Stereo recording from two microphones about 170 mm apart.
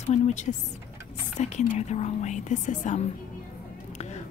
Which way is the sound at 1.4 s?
40° left (ahead or behind).